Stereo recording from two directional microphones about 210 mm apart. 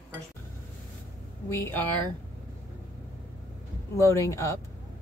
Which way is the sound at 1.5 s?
10° left (ahead or behind).